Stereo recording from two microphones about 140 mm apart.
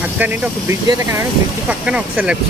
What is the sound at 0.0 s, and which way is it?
Speech, 10° right (ahead or behind).